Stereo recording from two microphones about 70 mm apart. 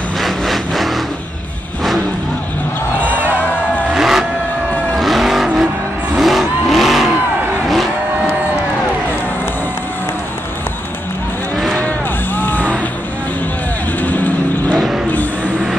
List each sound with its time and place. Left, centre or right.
0.2 s vehicle: centre
3.9 s vehicle: centre
11.5 s a sound: centre
12.4 s vehicle: left
14.0 s vehicle: left